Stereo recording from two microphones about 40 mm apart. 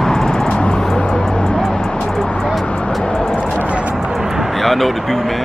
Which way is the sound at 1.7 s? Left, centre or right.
Left.